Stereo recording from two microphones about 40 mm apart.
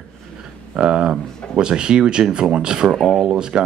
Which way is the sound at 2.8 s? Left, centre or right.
Centre.